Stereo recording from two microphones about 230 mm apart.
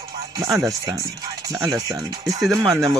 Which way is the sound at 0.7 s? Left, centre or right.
Centre.